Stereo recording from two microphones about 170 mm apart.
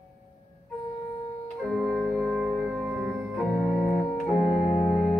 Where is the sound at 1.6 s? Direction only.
Centre (ahead or behind).